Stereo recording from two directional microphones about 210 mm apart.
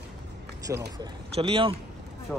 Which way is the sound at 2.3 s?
10° left (ahead or behind).